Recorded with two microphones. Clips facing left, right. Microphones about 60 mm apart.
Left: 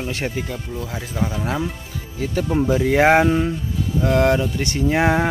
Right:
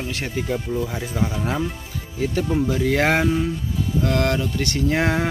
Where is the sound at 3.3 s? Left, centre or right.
Left.